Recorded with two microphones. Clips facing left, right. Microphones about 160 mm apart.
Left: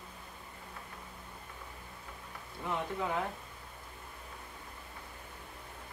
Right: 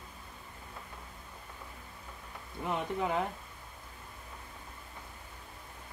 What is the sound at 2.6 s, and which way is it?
Speech, 20° right (ahead or behind).